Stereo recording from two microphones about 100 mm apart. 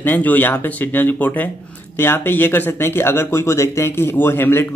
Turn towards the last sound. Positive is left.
turn(degrees=25)  # may be behind; listen again after turning